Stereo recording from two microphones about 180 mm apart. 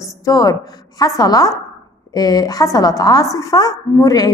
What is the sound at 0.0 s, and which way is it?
A woman's voice, 20° left (ahead or behind).